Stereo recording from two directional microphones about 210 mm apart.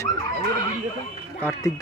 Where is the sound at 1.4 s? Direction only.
10° left (ahead or behind).